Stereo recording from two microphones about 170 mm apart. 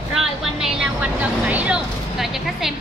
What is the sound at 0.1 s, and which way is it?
Vehicle, centre (ahead or behind).